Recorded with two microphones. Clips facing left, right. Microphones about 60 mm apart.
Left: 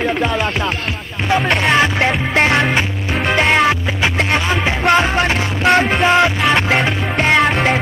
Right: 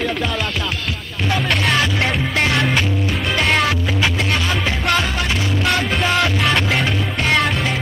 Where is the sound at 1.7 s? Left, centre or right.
Left.